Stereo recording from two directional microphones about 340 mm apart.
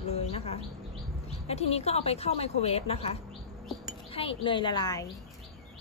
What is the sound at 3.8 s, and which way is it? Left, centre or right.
Wind chime, centre.